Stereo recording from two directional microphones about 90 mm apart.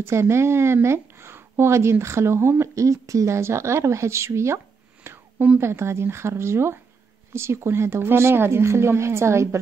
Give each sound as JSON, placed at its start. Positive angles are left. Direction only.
{"t": 0.0, "sound": "a woman's voice", "side_deg": -30}
{"t": 5.0, "sound": "a sound", "side_deg": -25}
{"t": 5.6, "sound": "a woman's voice", "side_deg": -30}